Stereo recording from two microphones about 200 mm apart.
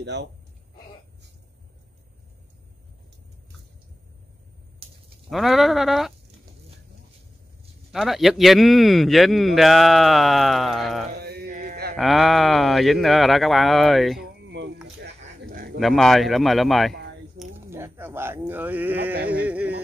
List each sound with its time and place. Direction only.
0.0 s speech: 60° right (ahead or behind)
5.3 s speech: centre (ahead or behind)
7.9 s speech: centre (ahead or behind)
11.1 s mantra: 50° right (ahead or behind)
12.0 s speech: centre (ahead or behind)
14.5 s a sound: 60° right (ahead or behind)
15.2 s a sound: 45° right (ahead or behind)
15.8 s speech: centre (ahead or behind)
17.6 s speech: 10° right (ahead or behind)
19.2 s music: 5° right (ahead or behind)